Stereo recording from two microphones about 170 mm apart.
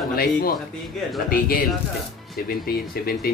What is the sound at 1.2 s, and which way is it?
Speech, 60° left (ahead or behind).